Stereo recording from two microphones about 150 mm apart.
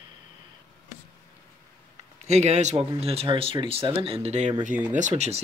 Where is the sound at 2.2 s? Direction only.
50° right (ahead or behind).